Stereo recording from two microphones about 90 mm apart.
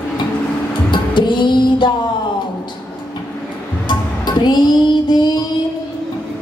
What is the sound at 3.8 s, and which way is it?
Music, 55° left (ahead or behind).